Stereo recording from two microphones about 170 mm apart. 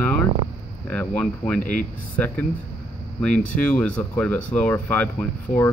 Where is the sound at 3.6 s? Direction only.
5° left (ahead or behind).